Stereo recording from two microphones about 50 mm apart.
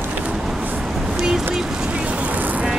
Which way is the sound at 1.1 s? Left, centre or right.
Centre.